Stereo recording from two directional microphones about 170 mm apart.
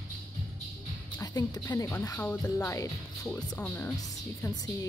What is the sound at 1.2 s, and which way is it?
Speech, 20° left (ahead or behind).